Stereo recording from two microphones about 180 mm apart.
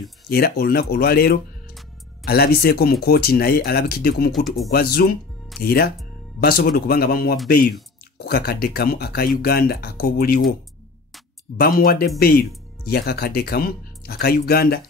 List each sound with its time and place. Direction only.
0.3 s speech: 55° left (ahead or behind)
11.5 s speech: 55° left (ahead or behind)